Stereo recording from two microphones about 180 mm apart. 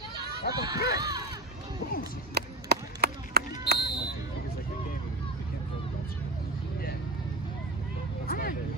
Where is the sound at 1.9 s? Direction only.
55° left (ahead or behind).